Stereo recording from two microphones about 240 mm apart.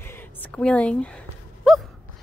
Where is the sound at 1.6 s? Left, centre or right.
Centre.